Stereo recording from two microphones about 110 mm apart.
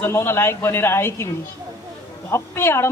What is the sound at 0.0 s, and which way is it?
Speech, 20° left (ahead or behind).